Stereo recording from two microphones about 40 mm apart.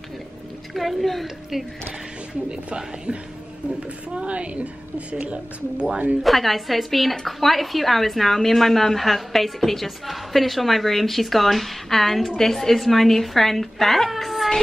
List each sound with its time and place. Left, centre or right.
0.7 s a woman's voice: centre
2.5 s speech: right
4.2 s speech: right
6.2 s a woman's voice: centre